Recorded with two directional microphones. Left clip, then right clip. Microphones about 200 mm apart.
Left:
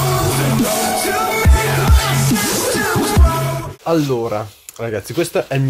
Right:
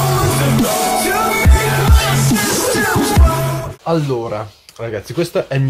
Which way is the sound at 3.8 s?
40° left (ahead or behind).